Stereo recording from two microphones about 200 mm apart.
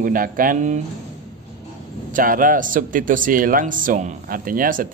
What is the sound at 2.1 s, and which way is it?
Speech, 45° right (ahead or behind).